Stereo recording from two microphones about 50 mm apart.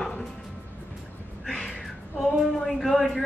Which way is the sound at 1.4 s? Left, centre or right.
Centre.